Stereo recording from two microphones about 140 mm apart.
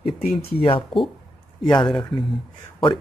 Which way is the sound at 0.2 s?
90° left.